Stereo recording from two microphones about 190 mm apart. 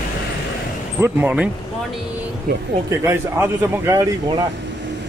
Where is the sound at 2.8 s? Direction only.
15° right (ahead or behind).